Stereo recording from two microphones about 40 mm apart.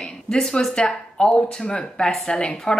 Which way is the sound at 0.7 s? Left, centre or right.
Left.